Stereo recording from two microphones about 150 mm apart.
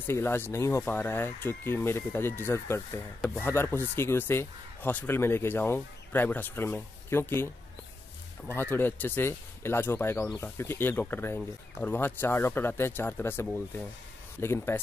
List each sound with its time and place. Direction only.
0.0 s speech: 15° left (ahead or behind)
8.5 s speech: 15° left (ahead or behind)